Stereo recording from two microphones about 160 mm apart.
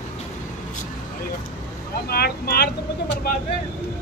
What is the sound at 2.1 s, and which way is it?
Speech, 75° left (ahead or behind).